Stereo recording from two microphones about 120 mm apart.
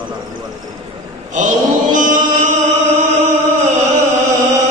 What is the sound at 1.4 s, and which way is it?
Chant, 90° right.